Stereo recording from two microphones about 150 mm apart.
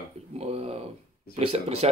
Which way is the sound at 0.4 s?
45° right (ahead or behind).